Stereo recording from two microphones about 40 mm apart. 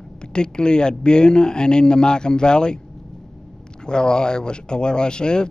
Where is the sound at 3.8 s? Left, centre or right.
Centre.